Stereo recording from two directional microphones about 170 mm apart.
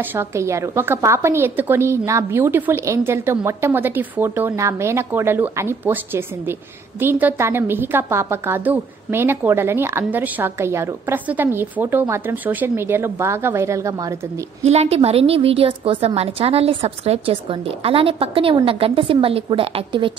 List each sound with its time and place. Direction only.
0.0 s a woman's voice: 15° right (ahead or behind)
14.6 s a woman's voice: 40° right (ahead or behind)